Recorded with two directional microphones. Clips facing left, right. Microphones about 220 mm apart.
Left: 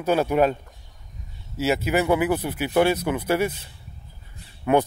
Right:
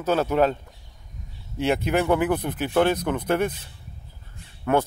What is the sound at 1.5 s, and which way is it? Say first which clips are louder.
A man's voice: even; 5° left (ahead or behind).